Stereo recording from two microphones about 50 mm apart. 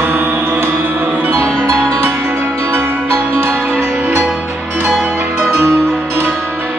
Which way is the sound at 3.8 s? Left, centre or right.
Right.